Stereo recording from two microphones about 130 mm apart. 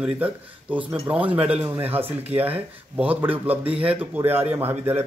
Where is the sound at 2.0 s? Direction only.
45° right (ahead or behind).